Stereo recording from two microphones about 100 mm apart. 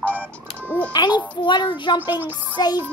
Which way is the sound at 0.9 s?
45° left (ahead or behind).